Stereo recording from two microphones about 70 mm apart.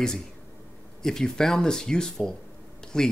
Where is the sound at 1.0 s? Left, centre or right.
Centre.